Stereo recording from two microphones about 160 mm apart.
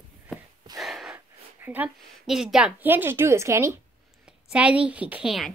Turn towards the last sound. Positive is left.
turn(degrees=0)  # may be behind; listen again after turning